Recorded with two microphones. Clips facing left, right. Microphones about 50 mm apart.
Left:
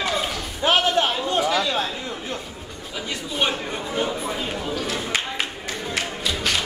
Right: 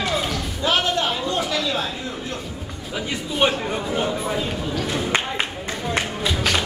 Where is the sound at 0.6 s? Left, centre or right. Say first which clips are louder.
Left 2 dB; left.